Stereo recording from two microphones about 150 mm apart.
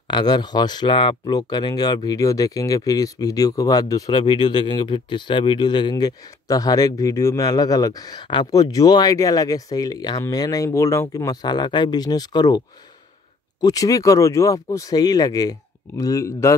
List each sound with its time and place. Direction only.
0.1 s speech: 30° left (ahead or behind)